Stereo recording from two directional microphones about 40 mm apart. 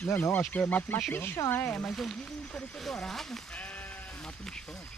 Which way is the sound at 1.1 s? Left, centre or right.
Left.